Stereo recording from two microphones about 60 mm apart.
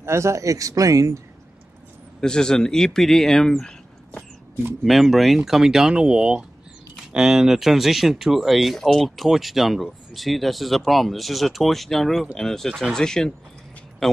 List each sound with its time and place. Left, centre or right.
0.0 s speech: right
2.1 s speech: centre
4.8 s speech: centre